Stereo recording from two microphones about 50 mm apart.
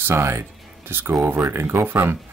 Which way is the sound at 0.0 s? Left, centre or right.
Right.